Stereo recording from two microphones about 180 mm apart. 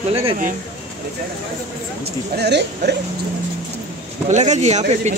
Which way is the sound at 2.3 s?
65° right (ahead or behind).